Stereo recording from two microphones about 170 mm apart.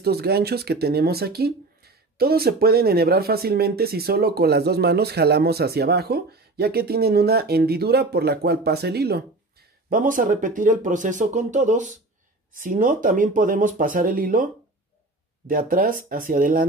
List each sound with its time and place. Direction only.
0.0 s speech: 70° right (ahead or behind)
9.8 s speech: 55° right (ahead or behind)